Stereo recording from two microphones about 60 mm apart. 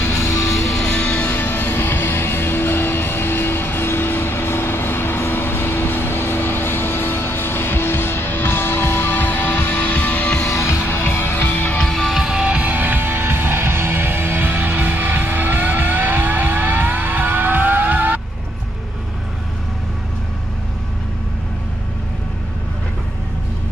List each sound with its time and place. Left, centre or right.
0.0 s music: left
0.7 s music: centre
10.5 s music: left
11.4 s music: left
11.8 s music: centre
12.2 s music: centre; by 18.2 s right